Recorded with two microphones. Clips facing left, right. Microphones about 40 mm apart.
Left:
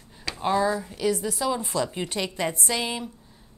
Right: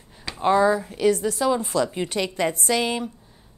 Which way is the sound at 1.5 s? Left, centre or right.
Right.